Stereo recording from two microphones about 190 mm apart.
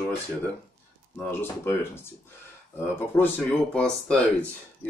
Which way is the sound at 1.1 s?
10° left (ahead or behind).